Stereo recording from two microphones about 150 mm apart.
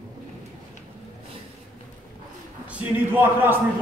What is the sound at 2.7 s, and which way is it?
Speech, 10° right (ahead or behind).